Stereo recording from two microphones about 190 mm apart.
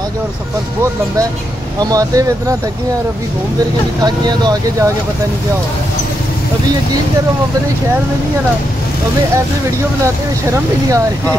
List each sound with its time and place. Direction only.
1.8 s speech: 20° right (ahead or behind)
4.0 s speech: 20° right (ahead or behind)